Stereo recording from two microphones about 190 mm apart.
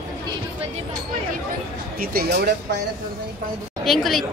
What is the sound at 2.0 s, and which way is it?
Speech, 55° right (ahead or behind).